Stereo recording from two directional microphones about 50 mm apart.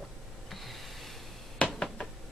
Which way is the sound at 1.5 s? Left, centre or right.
Left.